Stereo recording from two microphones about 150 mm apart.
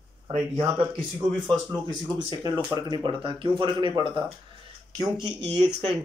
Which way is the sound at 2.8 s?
30° right (ahead or behind).